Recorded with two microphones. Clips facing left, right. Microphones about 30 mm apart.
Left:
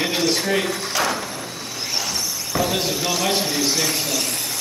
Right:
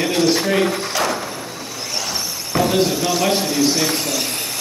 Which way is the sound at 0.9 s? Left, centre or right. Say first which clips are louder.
Left 2 dB; centre.